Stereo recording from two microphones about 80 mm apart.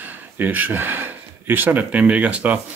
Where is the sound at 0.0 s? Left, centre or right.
Right.